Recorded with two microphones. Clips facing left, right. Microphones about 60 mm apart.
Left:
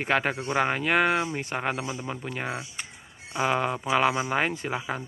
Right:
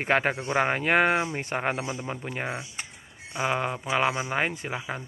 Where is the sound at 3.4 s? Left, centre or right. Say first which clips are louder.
Left 2 dB; centre.